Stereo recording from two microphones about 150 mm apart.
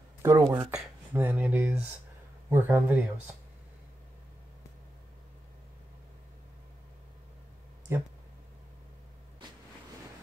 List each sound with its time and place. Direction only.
0.2 s speech: 20° right (ahead or behind)
7.9 s speech: 20° right (ahead or behind)